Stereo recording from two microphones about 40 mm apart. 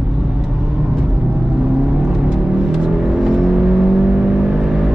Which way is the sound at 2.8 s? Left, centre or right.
Centre.